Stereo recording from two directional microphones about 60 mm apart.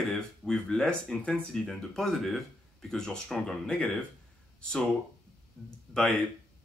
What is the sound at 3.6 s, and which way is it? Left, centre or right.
Speech, left.